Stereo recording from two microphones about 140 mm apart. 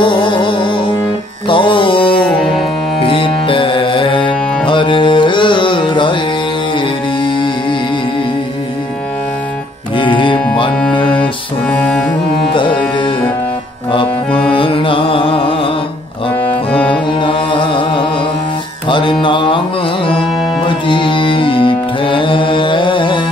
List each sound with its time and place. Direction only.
0.0 s music: 35° left (ahead or behind)
2.2 s music: 5° left (ahead or behind)
3.0 s music: 40° left (ahead or behind)
9.9 s music: 35° left (ahead or behind)
11.7 s music: 10° left (ahead or behind)
14.5 s music: 40° left (ahead or behind)
16.7 s music: 10° left (ahead or behind)
17.2 s music: 35° left (ahead or behind)
20.6 s music: 35° left (ahead or behind)